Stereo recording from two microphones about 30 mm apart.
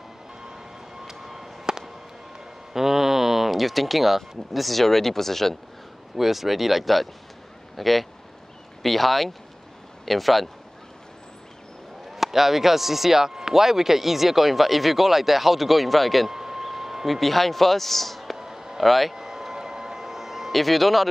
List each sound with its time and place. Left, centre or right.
1.0 s music: centre
2.7 s speech: centre
6.1 s speech: centre
12.2 s speech: centre
16.3 s speech: centre
18.4 s a sound: centre
18.8 s speech: centre
19.1 s a sound: centre
20.5 s speech: centre